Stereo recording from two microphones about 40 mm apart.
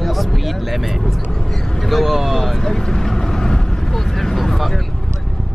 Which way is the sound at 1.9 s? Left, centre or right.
Centre.